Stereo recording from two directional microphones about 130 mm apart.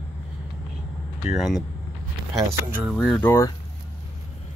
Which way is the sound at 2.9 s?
5° left (ahead or behind).